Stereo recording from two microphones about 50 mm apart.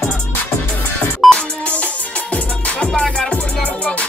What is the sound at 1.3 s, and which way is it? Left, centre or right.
Music, left.